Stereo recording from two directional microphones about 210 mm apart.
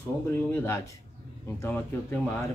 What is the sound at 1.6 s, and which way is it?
Speech, 10° left (ahead or behind).